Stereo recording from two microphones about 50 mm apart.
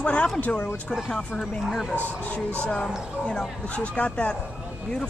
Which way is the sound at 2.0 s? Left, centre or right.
Left.